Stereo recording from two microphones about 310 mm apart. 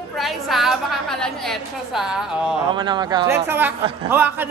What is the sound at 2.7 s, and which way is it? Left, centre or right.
A man's voice, centre.